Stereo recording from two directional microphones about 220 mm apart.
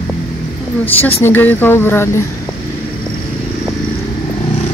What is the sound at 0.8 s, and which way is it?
Speech, 10° left (ahead or behind).